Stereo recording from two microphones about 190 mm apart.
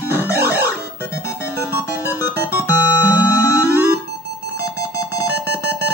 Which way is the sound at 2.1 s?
15° left (ahead or behind).